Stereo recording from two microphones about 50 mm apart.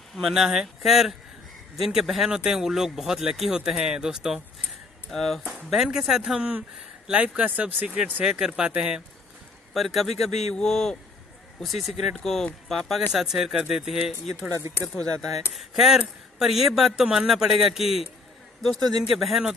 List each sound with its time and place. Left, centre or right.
0.2 s speech: centre
5.1 s a man's voice: centre
5.5 s speech: centre
7.1 s speech: right
9.8 s a man's voice: centre
13.1 s speech: centre
15.5 s a man's voice: centre